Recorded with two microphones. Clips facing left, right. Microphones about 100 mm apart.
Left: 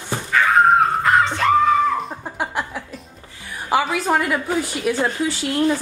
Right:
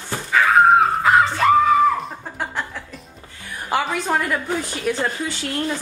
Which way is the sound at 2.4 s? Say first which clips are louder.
Left 2 dB; 10° left (ahead or behind).